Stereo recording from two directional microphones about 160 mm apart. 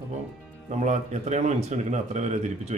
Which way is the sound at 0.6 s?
50° right (ahead or behind).